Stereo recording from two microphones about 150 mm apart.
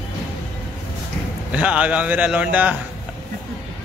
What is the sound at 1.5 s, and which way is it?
Speech, 10° right (ahead or behind).